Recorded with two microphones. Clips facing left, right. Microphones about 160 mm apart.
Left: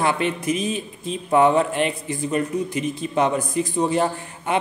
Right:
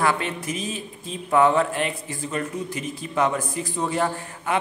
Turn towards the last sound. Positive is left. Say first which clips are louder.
# left 2 dB
turn(degrees=20)  # may be behind; listen again after turning